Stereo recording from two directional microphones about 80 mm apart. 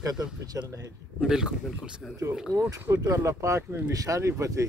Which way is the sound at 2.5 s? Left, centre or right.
Right.